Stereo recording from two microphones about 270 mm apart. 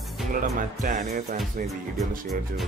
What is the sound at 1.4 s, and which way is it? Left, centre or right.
Speech, centre.